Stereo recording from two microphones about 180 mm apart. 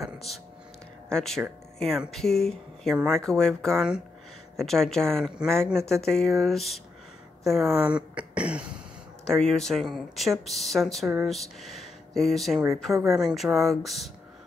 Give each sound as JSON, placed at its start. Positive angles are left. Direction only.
{"t": 1.0, "sound": "a woman's voice", "side_deg": 5}
{"t": 12.9, "sound": "speech", "side_deg": -15}
{"t": 13.2, "sound": "speech", "side_deg": 0}